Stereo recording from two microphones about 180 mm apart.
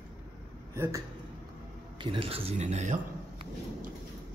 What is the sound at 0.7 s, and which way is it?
Speech, 15° right (ahead or behind).